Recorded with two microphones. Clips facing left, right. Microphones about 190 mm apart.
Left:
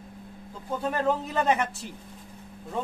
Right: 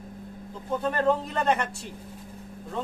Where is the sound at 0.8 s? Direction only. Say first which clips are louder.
Right 2 dB; 5° left (ahead or behind).